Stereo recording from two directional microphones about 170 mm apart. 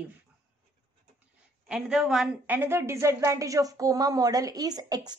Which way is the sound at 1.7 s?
5° right (ahead or behind).